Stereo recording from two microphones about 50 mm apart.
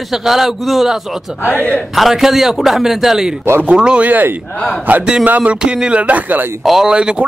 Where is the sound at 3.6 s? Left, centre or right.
Centre.